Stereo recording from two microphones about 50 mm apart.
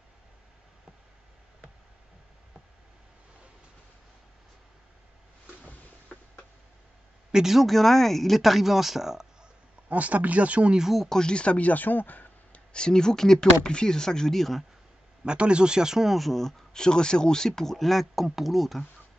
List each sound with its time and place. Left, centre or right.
7.3 s speech: centre
9.8 s speech: right
10.8 s speech: centre
11.1 s speech: centre; by 12.6 s left
12.7 s speech: centre
15.2 s speech: right; by 18.9 s centre